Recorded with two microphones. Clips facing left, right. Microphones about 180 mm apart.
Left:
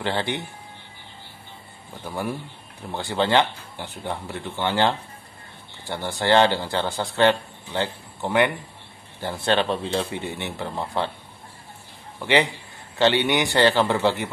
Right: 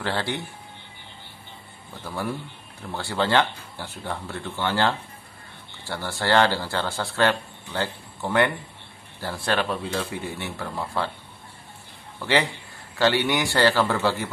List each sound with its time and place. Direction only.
0.0 s speech: 20° left (ahead or behind)
2.0 s speech: 15° left (ahead or behind)
12.2 s speech: 15° left (ahead or behind)